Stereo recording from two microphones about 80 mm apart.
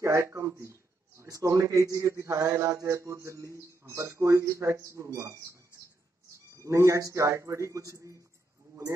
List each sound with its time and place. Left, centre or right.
0.0 s speech: right